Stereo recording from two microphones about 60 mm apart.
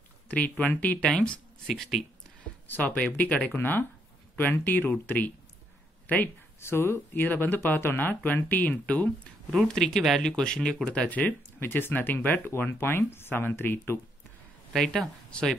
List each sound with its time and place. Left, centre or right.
0.3 s speech: left
1.7 s a woman's voice: centre
2.7 s speech: left
6.6 s speech: left
9.8 s speech: centre; by 13.9 s left
14.7 s a woman's voice: centre